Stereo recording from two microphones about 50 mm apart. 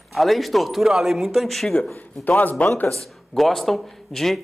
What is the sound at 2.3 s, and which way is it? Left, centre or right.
Speech, left.